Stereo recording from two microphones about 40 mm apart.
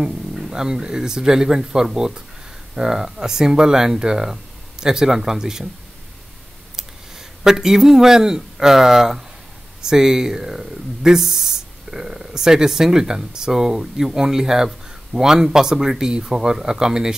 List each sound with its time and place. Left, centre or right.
0.3 s speech: centre
6.8 s speech: centre